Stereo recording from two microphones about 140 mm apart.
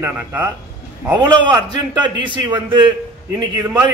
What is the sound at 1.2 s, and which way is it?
A man's voice, 30° right (ahead or behind).